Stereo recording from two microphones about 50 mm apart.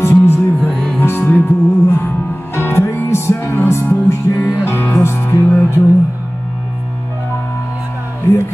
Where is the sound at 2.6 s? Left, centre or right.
Left.